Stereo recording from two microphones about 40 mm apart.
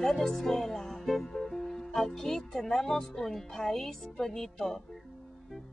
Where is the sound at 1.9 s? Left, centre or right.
Centre.